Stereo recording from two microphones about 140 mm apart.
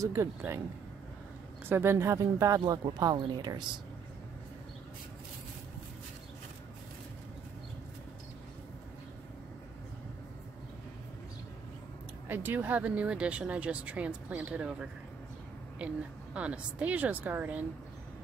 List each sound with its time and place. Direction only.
0.0 s speech: 20° right (ahead or behind)
1.7 s speech: 20° right (ahead or behind); by 3.8 s 35° right (ahead or behind)
12.3 s speech: 15° right (ahead or behind)
16.3 s speech: 10° right (ahead or behind)